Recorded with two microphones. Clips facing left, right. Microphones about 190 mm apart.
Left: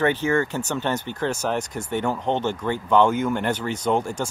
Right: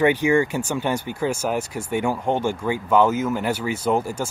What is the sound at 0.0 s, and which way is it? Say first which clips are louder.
Speech: right 3 dB; 15° right (ahead or behind).